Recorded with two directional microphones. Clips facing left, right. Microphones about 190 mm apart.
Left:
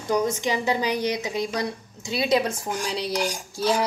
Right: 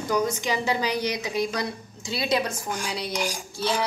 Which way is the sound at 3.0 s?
Centre (ahead or behind).